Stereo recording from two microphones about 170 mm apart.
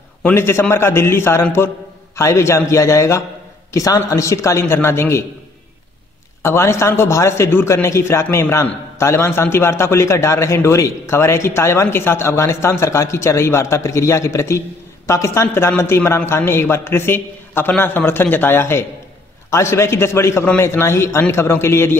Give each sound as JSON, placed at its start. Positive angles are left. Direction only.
{"t": 0.2, "sound": "a man's voice", "side_deg": 15}
{"t": 6.4, "sound": "a man's voice", "side_deg": 15}